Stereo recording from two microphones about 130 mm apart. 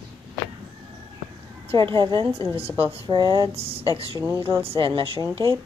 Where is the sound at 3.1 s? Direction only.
30° right (ahead or behind).